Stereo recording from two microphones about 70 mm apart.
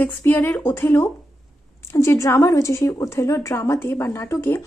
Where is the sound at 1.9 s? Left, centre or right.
Left.